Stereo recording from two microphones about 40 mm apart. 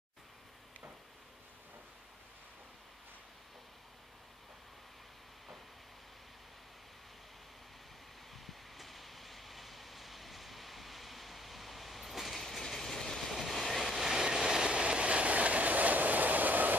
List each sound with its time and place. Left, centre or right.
8.5 s vehicle: centre; by 16.7 s right